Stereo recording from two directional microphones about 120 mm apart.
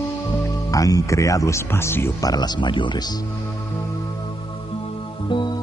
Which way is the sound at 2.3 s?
35° left (ahead or behind).